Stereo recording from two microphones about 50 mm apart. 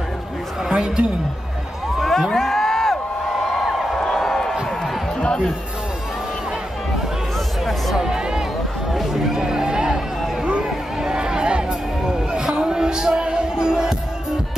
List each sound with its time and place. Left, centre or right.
0.7 s speech: centre
2.0 s music: centre
3.5 s crowd: centre
4.0 s a sound: centre
7.6 s music: centre
8.9 s a sound: centre
12.3 s music: centre